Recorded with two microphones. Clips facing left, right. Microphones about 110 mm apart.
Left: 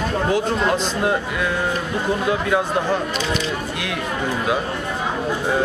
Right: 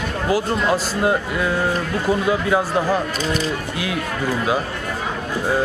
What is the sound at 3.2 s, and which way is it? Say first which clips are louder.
Speech: right 1 dB; 40° right (ahead or behind).